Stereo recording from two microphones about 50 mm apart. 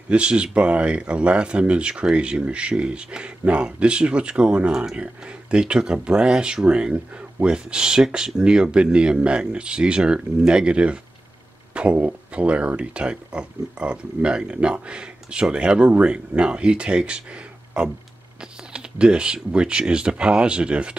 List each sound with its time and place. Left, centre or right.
0.1 s speech: right